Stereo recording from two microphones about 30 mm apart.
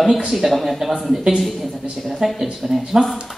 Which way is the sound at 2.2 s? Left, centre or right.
Centre.